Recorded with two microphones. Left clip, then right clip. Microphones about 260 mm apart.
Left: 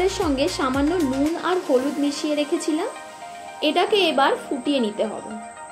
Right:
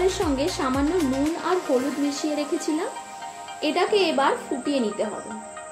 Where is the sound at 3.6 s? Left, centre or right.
Left.